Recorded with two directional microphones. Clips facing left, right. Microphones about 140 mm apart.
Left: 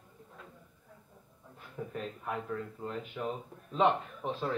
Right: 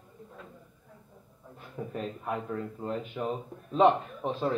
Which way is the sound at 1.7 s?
30° right (ahead or behind).